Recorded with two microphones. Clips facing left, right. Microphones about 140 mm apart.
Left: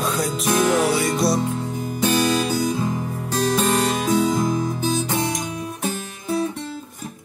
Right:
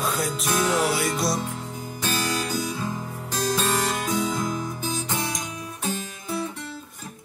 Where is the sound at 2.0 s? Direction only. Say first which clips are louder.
Left 8 dB; 20° left (ahead or behind).